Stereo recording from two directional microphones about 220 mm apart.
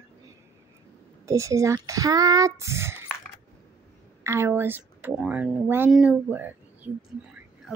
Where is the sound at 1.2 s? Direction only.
15° right (ahead or behind).